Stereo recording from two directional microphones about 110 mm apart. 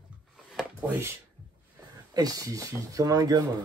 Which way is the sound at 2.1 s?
35° right (ahead or behind).